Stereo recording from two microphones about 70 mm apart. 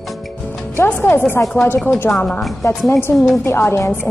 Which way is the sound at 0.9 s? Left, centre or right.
Left.